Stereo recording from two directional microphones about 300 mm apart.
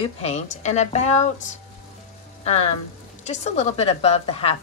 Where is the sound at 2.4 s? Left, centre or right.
Left.